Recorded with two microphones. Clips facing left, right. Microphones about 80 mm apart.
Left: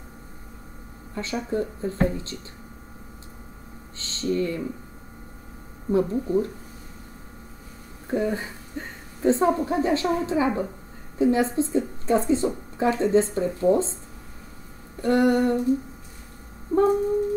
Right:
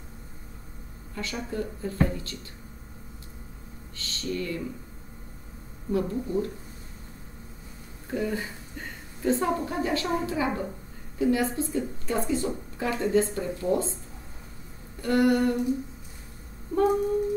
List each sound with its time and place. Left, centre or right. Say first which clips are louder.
1.1 s a woman's voice: left 5 dB; left
4.0 s speech: left 7 dB; left
5.9 s a woman's voice: left 5 dB; left
8.1 s a woman's voice: left 4 dB; left
15.0 s a woman's voice: left 3 dB; left
16.7 s a sound: left 4 dB; left